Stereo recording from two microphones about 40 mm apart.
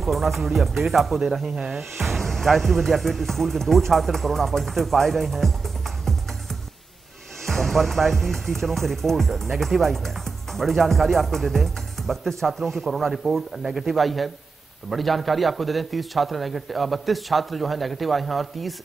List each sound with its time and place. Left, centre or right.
0.0 s speech: centre
7.4 s speech: centre